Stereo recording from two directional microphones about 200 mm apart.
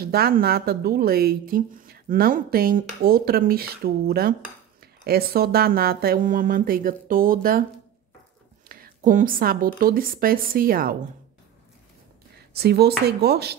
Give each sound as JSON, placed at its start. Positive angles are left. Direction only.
{"t": 0.0, "sound": "a woman's voice", "side_deg": -50}
{"t": 8.6, "sound": "a woman's voice", "side_deg": -45}
{"t": 12.5, "sound": "a woman's voice", "side_deg": -55}